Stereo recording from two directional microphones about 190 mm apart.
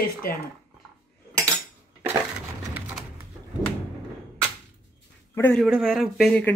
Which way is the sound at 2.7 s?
Centre (ahead or behind).